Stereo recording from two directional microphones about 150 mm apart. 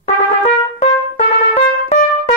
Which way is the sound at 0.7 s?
50° left (ahead or behind).